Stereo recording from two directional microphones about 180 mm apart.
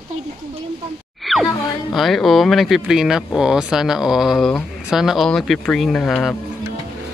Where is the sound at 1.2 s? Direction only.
Centre (ahead or behind).